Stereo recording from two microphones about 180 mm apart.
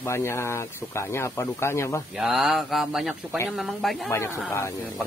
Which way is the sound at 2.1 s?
Centre (ahead or behind).